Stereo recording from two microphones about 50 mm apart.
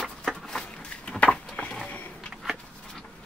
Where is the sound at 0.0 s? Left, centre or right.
Centre.